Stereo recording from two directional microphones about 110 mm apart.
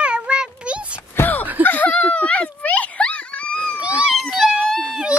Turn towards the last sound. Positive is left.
turn(degrees=-5)  # may be behind; listen again after turning